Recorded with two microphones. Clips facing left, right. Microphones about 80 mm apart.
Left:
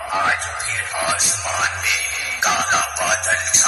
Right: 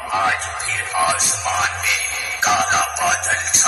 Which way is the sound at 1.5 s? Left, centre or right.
Centre.